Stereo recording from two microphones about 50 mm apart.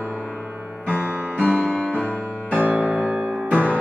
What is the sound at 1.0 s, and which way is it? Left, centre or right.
Music, right.